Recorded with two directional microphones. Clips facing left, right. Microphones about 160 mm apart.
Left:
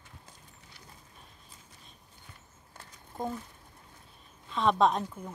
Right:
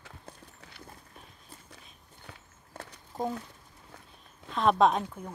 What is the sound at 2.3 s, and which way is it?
Walk, 70° right (ahead or behind).